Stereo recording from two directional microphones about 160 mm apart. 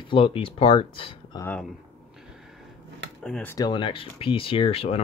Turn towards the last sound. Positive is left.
turn(degrees=35)  # may be behind; listen again after turning